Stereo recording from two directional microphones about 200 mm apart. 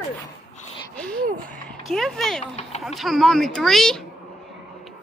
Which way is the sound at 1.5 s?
Centre (ahead or behind).